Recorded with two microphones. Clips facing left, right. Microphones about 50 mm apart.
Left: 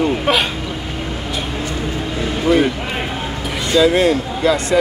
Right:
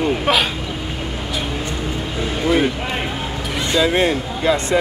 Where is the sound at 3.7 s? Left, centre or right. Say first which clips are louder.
Left 4 dB; right.